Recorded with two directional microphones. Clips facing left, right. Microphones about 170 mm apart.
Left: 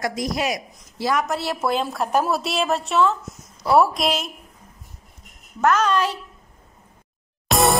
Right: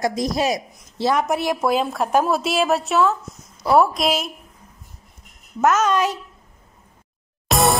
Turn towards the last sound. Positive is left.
turn(degrees=0)  # may be behind; listen again after turning